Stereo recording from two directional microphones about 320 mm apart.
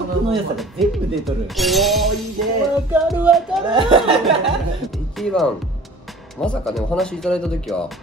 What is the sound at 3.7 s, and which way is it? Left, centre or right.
Speech, centre.